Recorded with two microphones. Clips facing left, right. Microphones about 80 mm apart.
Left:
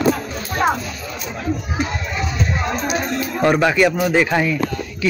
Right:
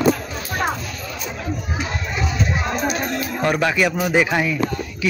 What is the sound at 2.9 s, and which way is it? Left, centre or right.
A man's voice, centre.